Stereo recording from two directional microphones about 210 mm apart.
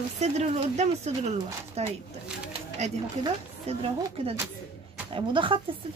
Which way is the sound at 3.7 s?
30° right (ahead or behind).